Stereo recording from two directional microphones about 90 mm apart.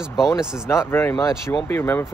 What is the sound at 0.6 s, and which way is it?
Speech, 30° left (ahead or behind).